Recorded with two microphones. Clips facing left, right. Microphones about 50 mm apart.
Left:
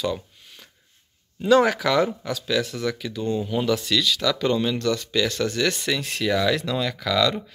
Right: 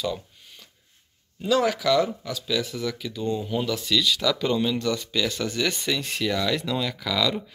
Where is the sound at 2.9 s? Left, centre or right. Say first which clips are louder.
Left 4 dB; left.